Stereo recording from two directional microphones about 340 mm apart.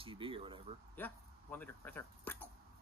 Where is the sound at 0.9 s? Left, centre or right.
Centre.